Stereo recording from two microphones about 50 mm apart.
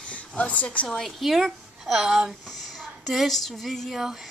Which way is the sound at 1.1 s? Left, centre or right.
Centre.